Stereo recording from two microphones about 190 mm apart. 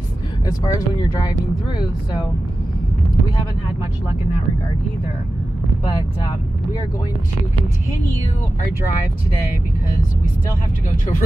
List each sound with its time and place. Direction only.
0.5 s speech: 20° left (ahead or behind)